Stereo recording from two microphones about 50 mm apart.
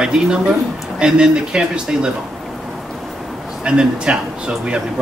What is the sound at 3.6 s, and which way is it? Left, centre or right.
Speech, centre.